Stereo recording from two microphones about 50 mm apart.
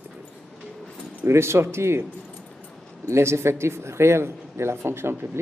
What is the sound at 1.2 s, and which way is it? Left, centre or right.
Speech, right.